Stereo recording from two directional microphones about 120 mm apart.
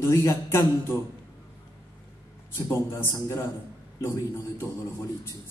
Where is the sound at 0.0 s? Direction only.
25° left (ahead or behind).